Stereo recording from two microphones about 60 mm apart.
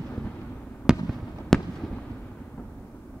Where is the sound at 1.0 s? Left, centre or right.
Centre.